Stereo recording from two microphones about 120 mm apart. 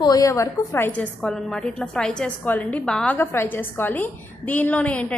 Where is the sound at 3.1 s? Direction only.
20° left (ahead or behind).